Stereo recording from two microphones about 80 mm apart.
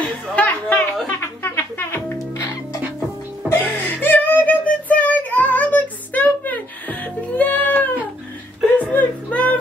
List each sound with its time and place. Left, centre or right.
0.0 s a sound: centre
1.2 s music: left
3.4 s child singing: left
8.9 s music: centre